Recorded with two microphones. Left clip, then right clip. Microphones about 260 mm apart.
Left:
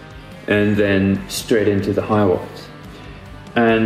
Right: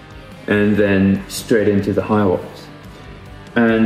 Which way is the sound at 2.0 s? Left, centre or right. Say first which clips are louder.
Even; right.